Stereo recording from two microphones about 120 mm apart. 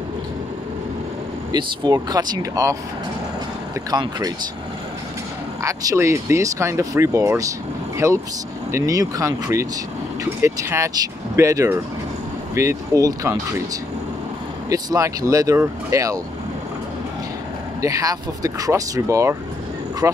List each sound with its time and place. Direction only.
1.5 s speech: 40° right (ahead or behind)
3.9 s speech: 35° right (ahead or behind)
5.6 s speech: 30° right (ahead or behind)
14.7 s speech: 30° right (ahead or behind)
17.8 s speech: 30° right (ahead or behind)